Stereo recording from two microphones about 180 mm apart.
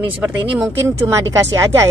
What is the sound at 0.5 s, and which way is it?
Speech, 15° right (ahead or behind).